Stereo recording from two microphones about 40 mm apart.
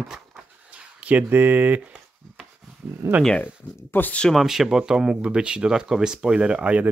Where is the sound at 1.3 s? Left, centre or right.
Right.